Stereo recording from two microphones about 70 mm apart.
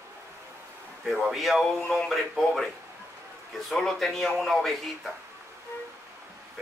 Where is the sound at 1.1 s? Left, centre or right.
Centre.